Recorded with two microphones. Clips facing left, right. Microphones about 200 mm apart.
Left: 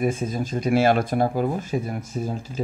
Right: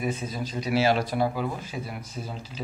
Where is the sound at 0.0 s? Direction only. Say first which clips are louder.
Left 6 dB; 50° left (ahead or behind).